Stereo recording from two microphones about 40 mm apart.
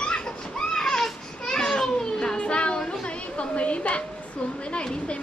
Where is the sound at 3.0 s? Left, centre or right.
Left.